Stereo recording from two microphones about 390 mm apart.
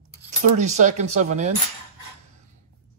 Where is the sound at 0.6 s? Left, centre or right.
Centre.